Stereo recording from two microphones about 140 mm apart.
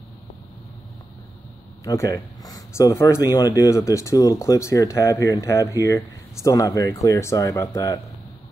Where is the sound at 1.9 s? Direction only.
25° left (ahead or behind).